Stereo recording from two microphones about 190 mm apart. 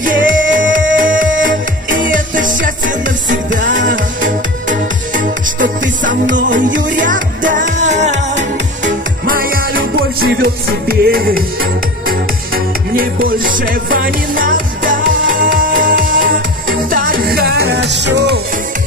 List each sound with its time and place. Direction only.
0.0 s music: 45° right (ahead or behind)
9.2 s music: 50° right (ahead or behind)